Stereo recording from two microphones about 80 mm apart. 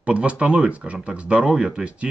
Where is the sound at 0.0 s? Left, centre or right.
Centre.